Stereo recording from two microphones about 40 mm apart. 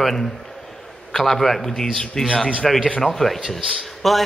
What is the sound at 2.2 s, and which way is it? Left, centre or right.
Speech, centre.